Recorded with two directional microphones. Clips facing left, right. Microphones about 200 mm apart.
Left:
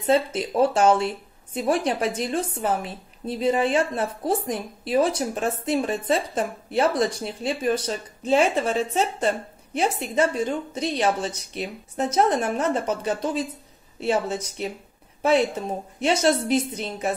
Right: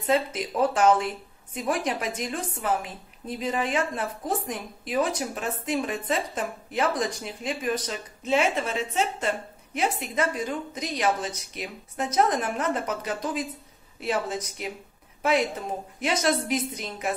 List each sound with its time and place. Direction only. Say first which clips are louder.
0.0 s a woman's voice: left 4 dB; 30° left (ahead or behind)
16.0 s speech: left 5 dB; 30° left (ahead or behind)